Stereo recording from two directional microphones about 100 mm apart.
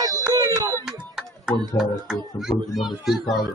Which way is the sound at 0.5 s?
40° right (ahead or behind).